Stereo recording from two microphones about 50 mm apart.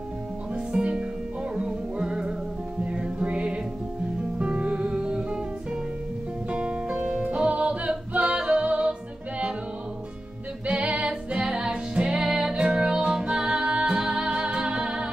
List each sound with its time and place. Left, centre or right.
0.6 s music: right
10.7 s music: right